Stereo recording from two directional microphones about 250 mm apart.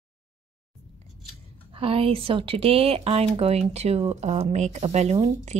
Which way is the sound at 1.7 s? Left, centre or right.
Right.